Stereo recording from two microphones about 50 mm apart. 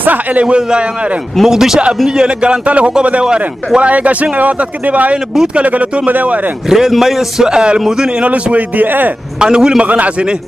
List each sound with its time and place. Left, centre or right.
0.0 s a man's voice: right
1.4 s a man's voice: centre
2.0 s a man's voice: centre
6.7 s a man's voice: centre; by 9.1 s right
9.4 s a man's voice: centre
9.8 s a man's voice: right